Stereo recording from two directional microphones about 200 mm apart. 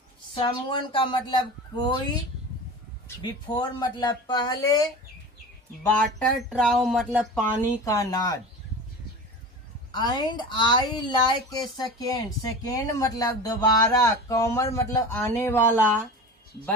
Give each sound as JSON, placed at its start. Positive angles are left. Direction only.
{"t": 0.3, "sound": "a woman's voice", "side_deg": 25}
{"t": 3.2, "sound": "a woman's voice", "side_deg": 25}
{"t": 5.9, "sound": "speech", "side_deg": 0}
{"t": 7.3, "sound": "speech", "side_deg": 10}
{"t": 9.9, "sound": "speech", "side_deg": 20}